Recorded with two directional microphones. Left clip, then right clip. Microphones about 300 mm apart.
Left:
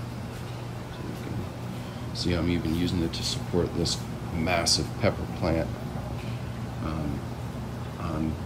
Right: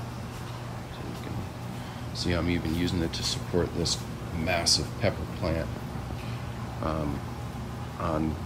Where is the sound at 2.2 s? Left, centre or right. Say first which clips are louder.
Left 1 dB; centre.